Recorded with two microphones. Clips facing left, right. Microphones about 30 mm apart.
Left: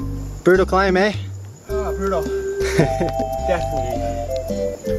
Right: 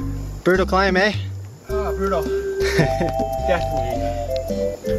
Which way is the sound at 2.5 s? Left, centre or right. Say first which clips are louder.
Left 1 dB; centre.